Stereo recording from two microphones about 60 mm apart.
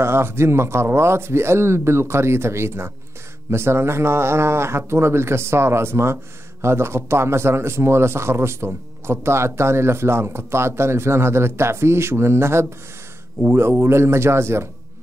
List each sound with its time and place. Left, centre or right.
0.0 s a man's voice: right